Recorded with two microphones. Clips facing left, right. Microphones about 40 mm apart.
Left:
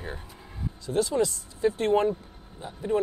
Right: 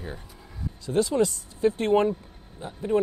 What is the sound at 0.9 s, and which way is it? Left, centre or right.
Speech, right.